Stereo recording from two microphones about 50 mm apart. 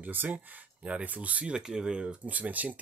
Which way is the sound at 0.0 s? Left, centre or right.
Right.